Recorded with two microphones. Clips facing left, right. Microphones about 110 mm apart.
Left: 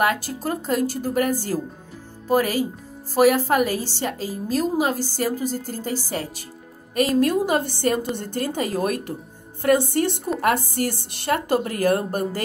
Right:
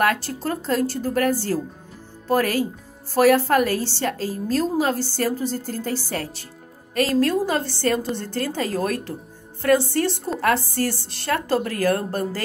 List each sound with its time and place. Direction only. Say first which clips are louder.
0.0 s a woman's voice: even; 5° left (ahead or behind)